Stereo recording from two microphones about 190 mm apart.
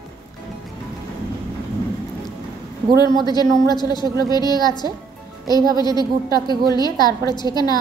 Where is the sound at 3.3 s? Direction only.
20° left (ahead or behind).